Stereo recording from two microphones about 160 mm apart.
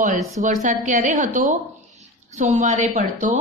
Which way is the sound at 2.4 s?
50° right (ahead or behind).